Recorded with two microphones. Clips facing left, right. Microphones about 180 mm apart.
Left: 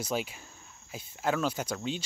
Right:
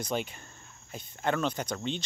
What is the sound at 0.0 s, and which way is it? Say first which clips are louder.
Speech: even; 5° left (ahead or behind).